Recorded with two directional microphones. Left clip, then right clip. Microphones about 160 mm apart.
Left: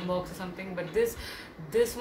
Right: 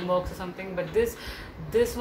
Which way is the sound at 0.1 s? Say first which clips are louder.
Right 6 dB; 10° right (ahead or behind).